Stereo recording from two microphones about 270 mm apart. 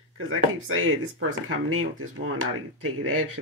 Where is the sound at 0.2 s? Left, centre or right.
Right.